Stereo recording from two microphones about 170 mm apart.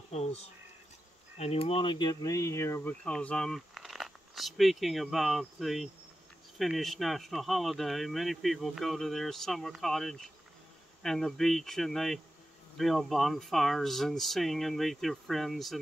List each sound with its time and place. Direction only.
0.1 s speech: 40° left (ahead or behind); by 15.8 s centre (ahead or behind)